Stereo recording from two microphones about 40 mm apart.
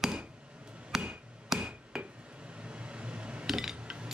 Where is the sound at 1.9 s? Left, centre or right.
Centre.